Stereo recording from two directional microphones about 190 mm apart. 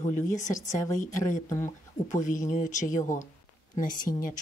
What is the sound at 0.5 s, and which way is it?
Speech, 15° left (ahead or behind).